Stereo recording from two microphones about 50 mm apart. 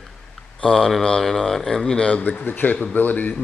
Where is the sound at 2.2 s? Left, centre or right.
Left.